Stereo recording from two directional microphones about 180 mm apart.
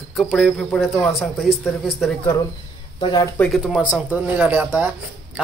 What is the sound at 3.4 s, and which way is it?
Speech, centre (ahead or behind).